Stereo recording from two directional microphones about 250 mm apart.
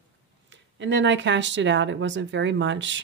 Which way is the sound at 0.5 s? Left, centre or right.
Right.